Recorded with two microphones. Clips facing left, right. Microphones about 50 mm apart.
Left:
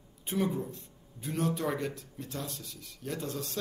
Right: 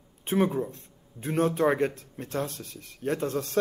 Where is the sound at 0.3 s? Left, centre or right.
Right.